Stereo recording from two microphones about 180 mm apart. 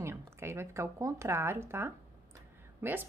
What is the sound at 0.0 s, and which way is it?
Speech, 15° right (ahead or behind).